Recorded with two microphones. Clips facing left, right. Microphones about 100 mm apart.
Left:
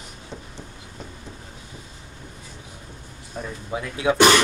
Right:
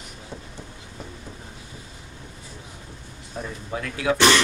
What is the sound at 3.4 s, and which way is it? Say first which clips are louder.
Speech: even; centre (ahead or behind).